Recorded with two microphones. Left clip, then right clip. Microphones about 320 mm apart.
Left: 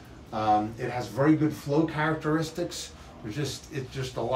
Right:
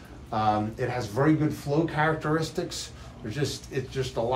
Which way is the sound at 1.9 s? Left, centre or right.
Centre.